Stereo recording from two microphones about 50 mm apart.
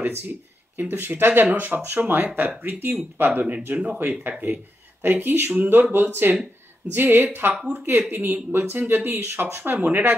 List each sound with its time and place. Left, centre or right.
0.0 s speech: right
9.8 s speech: right